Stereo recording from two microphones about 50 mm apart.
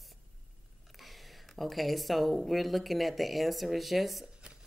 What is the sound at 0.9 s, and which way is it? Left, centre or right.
Speech, centre.